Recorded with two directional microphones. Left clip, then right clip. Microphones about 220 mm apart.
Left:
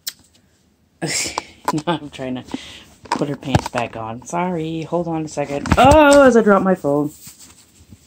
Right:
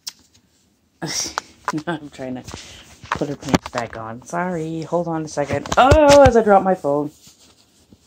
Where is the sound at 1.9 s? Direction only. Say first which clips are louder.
Left 4 dB; 5° left (ahead or behind).